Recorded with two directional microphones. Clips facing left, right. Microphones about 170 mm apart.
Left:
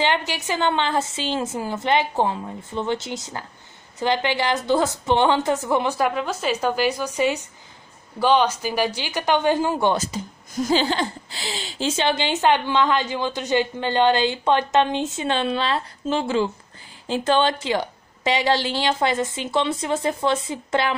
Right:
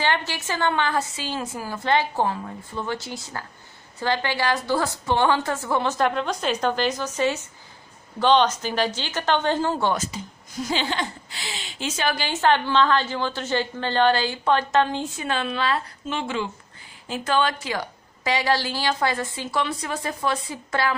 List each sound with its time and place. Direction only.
0.0 s a woman's voice: 15° left (ahead or behind)
10.6 s speech: 40° left (ahead or behind); by 20.9 s 20° left (ahead or behind)